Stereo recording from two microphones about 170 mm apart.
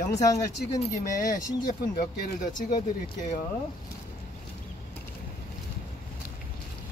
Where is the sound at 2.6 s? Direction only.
50° left (ahead or behind).